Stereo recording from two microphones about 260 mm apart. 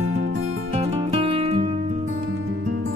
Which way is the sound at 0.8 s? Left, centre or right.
Right.